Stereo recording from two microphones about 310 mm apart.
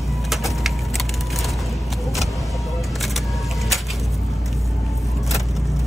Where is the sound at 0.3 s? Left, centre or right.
Centre.